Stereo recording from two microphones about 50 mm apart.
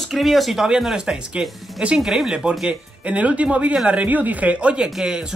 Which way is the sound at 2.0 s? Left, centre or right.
Centre.